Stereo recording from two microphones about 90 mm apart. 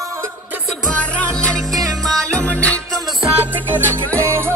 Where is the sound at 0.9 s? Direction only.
15° left (ahead or behind).